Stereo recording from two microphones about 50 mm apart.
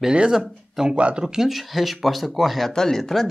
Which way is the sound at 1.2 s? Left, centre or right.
Centre.